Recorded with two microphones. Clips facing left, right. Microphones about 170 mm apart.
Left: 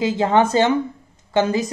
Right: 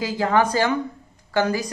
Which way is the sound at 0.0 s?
25° left (ahead or behind).